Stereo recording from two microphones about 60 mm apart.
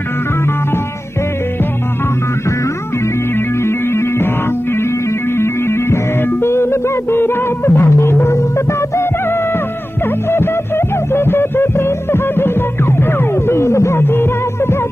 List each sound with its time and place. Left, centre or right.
3.3 s music: left
5.3 s music: left